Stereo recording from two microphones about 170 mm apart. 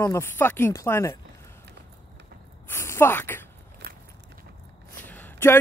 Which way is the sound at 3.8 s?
60° right (ahead or behind).